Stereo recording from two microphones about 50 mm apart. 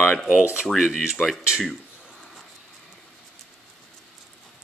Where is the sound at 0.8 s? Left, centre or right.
Centre.